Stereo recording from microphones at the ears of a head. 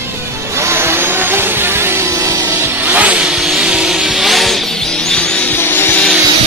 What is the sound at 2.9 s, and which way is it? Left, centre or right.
Vehicle, centre.